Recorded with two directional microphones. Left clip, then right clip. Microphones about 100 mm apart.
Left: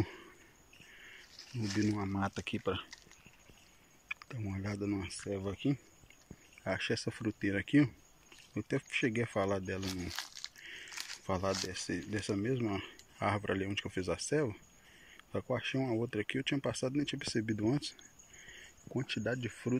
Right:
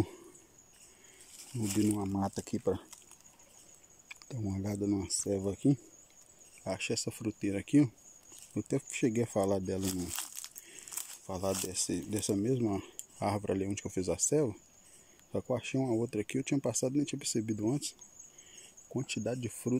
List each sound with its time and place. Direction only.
1.6 s speech: 35° right (ahead or behind)
4.1 s speech: 50° right (ahead or behind)
6.6 s speech: 25° right (ahead or behind); by 9.8 s 50° right (ahead or behind)
10.0 s crumpling: 10° right (ahead or behind)
10.6 s crumpling: 40° right (ahead or behind)
11.7 s speech: 35° right (ahead or behind)
18.9 s speech: 30° right (ahead or behind)